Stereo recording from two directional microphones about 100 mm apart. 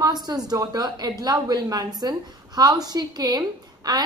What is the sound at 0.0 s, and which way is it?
A woman's voice, 40° right (ahead or behind).